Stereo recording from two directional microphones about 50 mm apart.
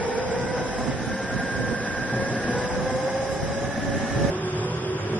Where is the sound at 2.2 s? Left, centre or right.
Left.